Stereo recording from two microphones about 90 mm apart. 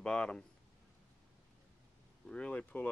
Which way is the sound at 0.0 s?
10° left (ahead or behind).